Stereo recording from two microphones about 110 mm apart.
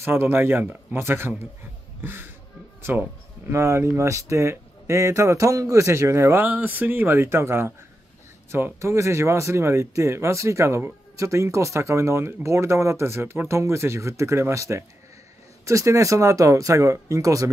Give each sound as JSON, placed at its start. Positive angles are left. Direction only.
{"t": 0.0, "sound": "speech", "side_deg": -20}